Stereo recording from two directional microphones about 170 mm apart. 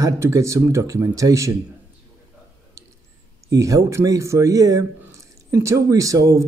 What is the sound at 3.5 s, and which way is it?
Speech, 20° right (ahead or behind).